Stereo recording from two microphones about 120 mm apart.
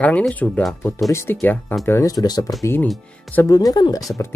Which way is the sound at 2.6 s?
20° left (ahead or behind).